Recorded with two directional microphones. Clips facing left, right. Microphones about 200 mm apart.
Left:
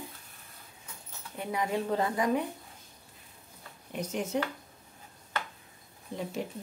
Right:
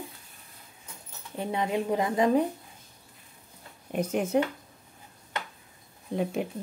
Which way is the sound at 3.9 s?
55° right (ahead or behind).